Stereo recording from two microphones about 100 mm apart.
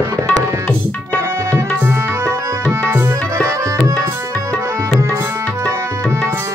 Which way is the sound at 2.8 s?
30° right (ahead or behind).